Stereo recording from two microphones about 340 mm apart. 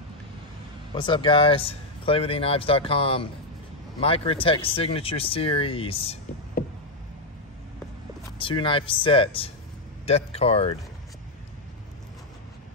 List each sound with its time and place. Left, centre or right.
0.9 s speech: centre
8.4 s speech: centre